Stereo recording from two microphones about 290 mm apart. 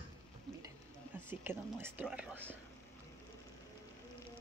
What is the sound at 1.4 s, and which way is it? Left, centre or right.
Speech, centre.